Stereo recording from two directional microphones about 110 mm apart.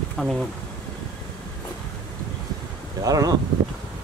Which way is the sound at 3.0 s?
35° right (ahead or behind).